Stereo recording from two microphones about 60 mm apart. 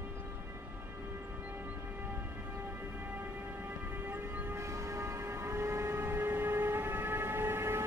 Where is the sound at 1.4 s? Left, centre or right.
Right.